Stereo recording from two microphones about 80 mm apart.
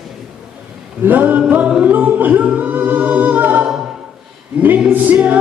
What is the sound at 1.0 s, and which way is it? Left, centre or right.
Singing, right.